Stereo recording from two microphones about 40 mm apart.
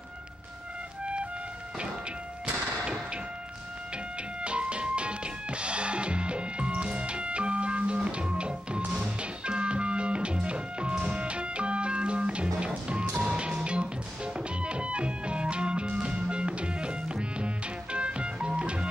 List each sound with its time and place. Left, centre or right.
2.4 s music: right
4.4 s music: right